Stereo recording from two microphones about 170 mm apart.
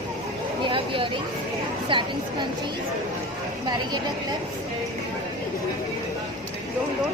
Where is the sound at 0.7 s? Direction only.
30° right (ahead or behind).